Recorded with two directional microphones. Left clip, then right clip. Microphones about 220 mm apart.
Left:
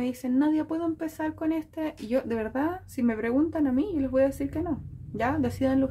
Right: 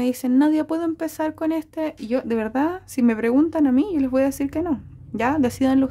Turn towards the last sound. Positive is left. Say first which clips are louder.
# right 6 dB
turn(degrees=-40)  # may be behind; listen again after turning